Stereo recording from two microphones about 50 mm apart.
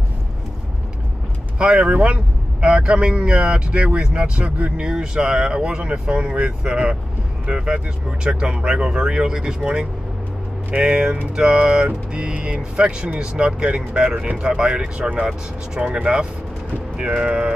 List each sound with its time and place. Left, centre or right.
1.6 s speech: right
4.8 s speech: centre
10.7 s speech: centre